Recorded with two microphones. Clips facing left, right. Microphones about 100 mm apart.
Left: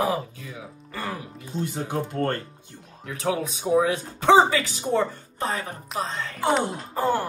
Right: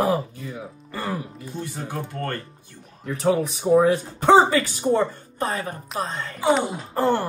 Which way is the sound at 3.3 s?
50° right (ahead or behind).